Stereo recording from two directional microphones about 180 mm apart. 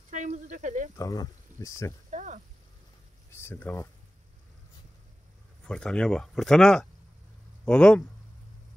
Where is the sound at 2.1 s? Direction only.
45° right (ahead or behind).